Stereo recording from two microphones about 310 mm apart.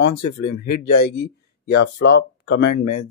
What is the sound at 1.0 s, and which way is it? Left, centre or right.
Speech, left.